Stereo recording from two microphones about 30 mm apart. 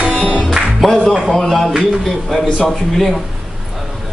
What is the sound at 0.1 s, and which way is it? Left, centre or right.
Speech, left.